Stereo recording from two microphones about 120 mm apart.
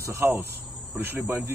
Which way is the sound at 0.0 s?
20° right (ahead or behind).